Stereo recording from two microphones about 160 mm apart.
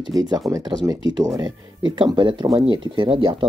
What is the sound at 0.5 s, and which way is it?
Speech, 25° right (ahead or behind).